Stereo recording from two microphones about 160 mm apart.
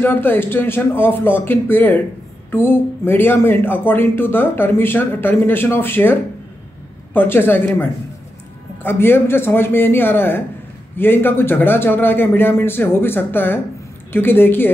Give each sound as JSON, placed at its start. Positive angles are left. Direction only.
{"t": 0.0, "sound": "speech", "side_deg": 10}
{"t": 7.2, "sound": "speech", "side_deg": 15}